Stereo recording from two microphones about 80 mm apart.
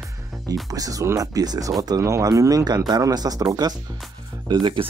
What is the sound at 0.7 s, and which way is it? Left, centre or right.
Speech, right.